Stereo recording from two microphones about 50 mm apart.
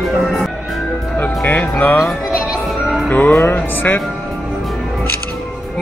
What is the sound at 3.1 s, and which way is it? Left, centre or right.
Music, left.